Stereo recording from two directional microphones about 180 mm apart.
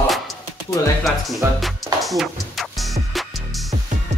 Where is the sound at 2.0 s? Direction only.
Centre (ahead or behind).